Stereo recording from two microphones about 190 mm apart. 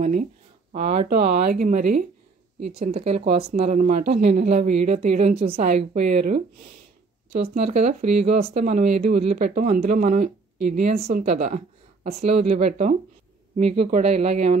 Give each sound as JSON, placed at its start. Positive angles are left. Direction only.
{"t": 0.0, "sound": "speech", "side_deg": -40}
{"t": 1.1, "sound": "speech", "side_deg": -45}
{"t": 2.8, "sound": "speech", "side_deg": -35}